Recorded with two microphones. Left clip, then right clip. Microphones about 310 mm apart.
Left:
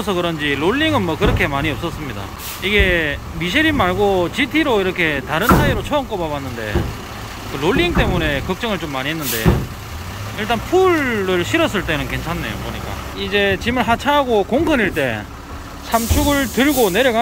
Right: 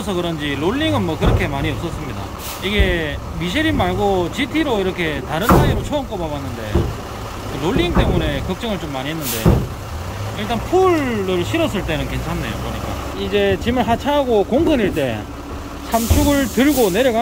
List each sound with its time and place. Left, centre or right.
0.0 s speech: centre
7.6 s speech: centre
9.5 s speech: right
10.5 s speech: centre
13.2 s speech: centre